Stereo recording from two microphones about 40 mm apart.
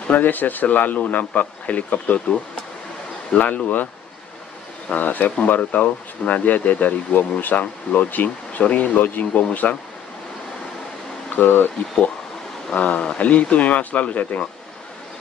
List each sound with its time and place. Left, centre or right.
0.1 s speech: left
2.1 s speech: left
3.3 s speech: left
4.9 s speech: left
11.2 s speech: left
12.7 s speech: left